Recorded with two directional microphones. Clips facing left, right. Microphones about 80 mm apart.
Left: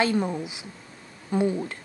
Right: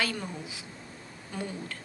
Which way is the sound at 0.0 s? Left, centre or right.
Left.